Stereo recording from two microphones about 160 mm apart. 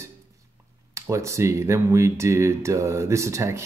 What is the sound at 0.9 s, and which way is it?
Speech, 20° right (ahead or behind).